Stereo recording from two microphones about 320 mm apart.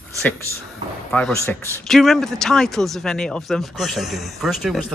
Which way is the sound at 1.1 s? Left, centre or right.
Centre.